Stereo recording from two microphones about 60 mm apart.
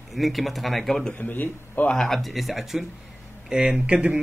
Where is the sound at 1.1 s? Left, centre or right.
Left.